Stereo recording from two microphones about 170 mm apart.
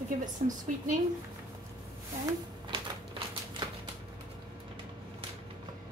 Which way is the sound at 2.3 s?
30° right (ahead or behind).